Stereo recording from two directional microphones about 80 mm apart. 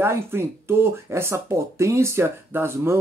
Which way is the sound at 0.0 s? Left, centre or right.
Right.